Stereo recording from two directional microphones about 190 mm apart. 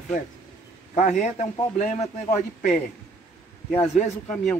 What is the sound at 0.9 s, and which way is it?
A man's voice, 40° left (ahead or behind).